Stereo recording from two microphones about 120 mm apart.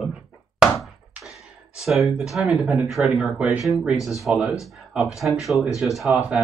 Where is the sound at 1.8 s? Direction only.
Centre (ahead or behind).